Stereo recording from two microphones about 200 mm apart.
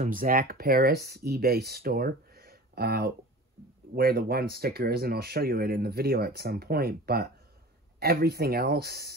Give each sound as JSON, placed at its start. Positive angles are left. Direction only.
{"t": 0.0, "sound": "speech", "side_deg": -45}